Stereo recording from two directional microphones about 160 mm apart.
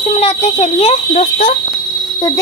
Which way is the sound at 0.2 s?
50° left (ahead or behind).